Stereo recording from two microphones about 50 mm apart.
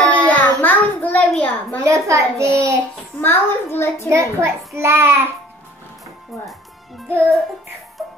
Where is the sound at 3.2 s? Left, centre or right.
Left.